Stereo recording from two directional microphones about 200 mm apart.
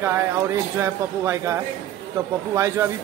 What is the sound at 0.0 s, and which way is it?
Speech, 10° right (ahead or behind).